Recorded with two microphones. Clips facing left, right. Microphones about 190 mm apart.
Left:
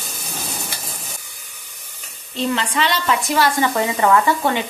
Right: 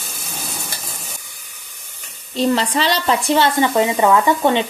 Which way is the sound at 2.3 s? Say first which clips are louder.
Right 4 dB; 35° right (ahead or behind).